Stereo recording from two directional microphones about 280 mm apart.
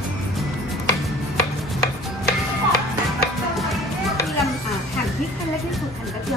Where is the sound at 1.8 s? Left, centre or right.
Left.